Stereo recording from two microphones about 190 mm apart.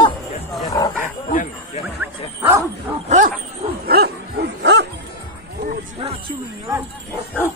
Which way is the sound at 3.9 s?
55° right (ahead or behind).